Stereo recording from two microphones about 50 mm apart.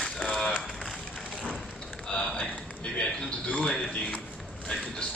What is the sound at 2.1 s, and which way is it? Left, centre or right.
A man's voice, centre.